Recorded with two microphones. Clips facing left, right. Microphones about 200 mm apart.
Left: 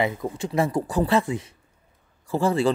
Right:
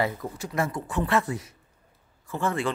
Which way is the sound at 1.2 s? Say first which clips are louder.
Left 4 dB; 20° left (ahead or behind).